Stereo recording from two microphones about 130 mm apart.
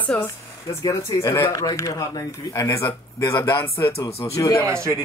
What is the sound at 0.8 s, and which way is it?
Speech, 25° left (ahead or behind).